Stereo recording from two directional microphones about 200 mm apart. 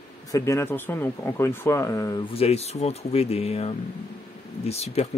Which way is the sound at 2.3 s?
30° left (ahead or behind).